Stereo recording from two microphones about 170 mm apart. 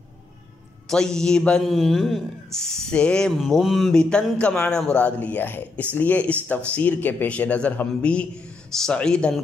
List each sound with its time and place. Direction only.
0.8 s a man's voice: 5° left (ahead or behind)